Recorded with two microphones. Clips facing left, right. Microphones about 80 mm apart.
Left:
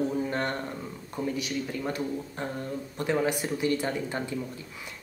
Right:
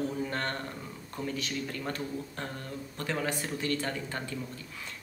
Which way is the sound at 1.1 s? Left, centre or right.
Centre.